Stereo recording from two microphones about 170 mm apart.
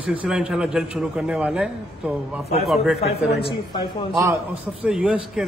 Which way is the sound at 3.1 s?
75° left (ahead or behind).